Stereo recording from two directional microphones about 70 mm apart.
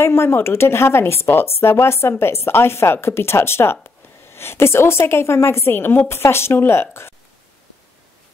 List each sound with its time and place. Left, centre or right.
0.0 s speech: left